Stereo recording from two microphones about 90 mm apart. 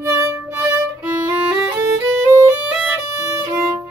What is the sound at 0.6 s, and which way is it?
Violin, 15° right (ahead or behind).